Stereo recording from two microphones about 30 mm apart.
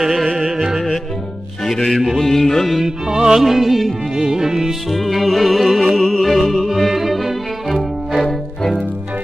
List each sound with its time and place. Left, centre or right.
0.0 s music: centre
2.1 s music: centre
3.1 s music: right
3.4 s music: centre
4.2 s music: centre
4.9 s music: centre
8.3 s music: centre